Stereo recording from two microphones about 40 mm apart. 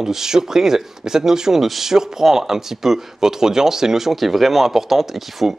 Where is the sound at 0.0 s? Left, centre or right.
Centre.